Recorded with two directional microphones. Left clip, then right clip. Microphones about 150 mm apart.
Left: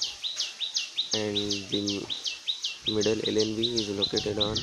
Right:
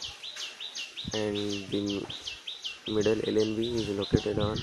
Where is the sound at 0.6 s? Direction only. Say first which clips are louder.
Left 7 dB; 45° right (ahead or behind).